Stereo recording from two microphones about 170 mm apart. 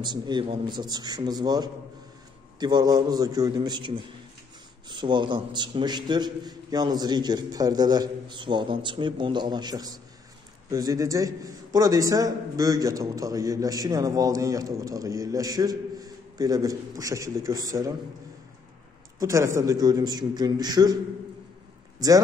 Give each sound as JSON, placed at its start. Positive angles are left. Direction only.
{"t": 0.0, "sound": "a man's voice", "side_deg": -25}
{"t": 19.1, "sound": "a man's voice", "side_deg": -20}